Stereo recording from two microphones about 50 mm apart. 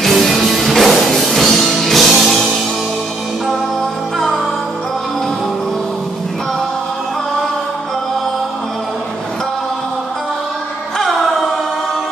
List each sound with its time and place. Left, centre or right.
0.0 s music: centre
11.0 s music: centre